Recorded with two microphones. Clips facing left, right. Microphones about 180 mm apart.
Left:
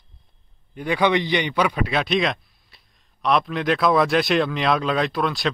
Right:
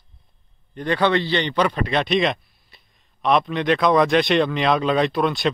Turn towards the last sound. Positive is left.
turn(degrees=0)  # may be behind; listen again after turning